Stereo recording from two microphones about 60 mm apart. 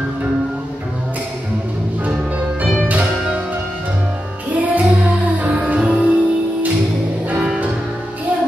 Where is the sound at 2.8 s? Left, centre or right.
Right.